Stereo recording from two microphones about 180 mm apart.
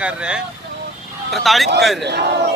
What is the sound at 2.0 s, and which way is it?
Speech, 70° right (ahead or behind).